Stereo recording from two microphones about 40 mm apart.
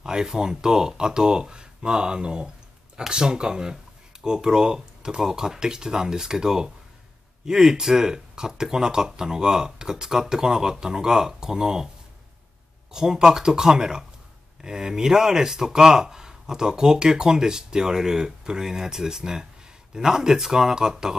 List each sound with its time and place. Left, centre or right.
0.0 s speech: centre
12.9 s speech: centre